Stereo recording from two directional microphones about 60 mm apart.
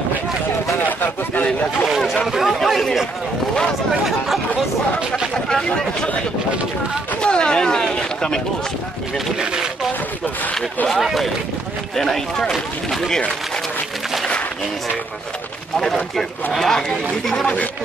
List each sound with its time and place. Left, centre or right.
0.8 s a sound: left
1.9 s speech: centre
5.3 s speech: centre
7.2 s speech: centre
10.9 s speech: centre
15.8 s speech: centre